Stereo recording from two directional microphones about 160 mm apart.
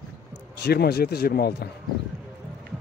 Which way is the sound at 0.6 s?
85° left.